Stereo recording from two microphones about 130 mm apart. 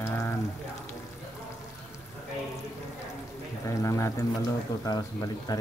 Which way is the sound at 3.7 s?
25° left (ahead or behind).